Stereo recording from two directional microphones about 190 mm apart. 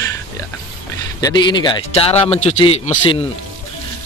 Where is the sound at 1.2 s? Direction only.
25° left (ahead or behind).